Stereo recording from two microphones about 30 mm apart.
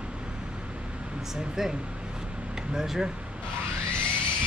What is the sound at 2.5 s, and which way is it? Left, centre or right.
Speech, centre.